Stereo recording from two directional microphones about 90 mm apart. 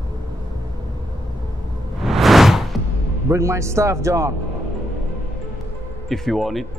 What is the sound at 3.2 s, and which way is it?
Speech, 30° right (ahead or behind).